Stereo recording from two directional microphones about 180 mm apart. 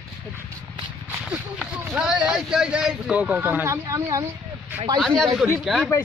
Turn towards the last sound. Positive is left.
turn(degrees=0)  # may be behind; listen again after turning